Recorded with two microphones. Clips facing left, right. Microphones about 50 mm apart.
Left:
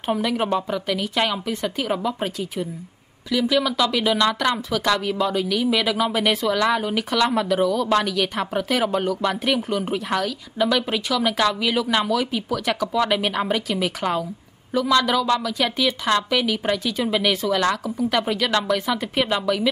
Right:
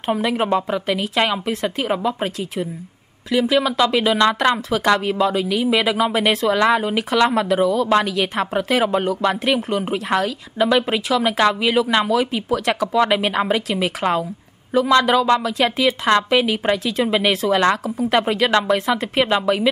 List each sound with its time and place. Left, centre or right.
0.3 s speech: right
1.5 s speech: right
3.3 s speech: right
7.6 s a woman's voice: right